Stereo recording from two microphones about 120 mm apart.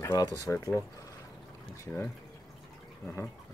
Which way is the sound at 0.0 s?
35° left (ahead or behind).